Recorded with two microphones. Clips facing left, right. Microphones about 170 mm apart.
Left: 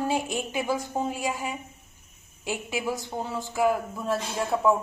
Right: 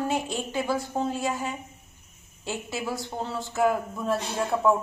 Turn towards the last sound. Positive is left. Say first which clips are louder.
# even
turn(degrees=0)  # may be behind; listen again after turning